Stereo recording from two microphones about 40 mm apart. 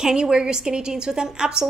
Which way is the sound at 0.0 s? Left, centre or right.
Centre.